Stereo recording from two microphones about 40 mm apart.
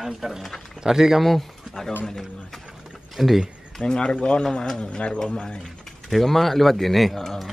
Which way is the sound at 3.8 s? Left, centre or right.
Left.